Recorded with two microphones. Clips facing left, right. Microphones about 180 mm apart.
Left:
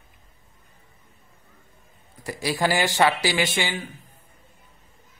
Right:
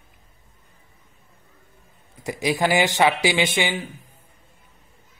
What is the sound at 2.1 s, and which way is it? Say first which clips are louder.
Speech: right 3 dB; 20° right (ahead or behind).